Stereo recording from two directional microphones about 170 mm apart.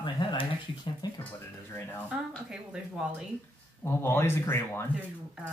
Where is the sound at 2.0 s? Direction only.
5° right (ahead or behind).